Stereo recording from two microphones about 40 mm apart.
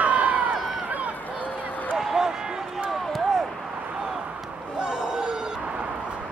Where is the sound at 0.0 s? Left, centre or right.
Right.